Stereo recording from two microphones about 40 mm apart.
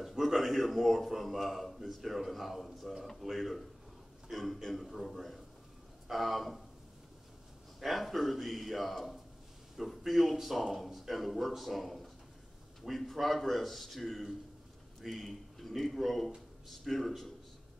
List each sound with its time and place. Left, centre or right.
0.4 s a man's voice: centre
7.8 s a man's voice: centre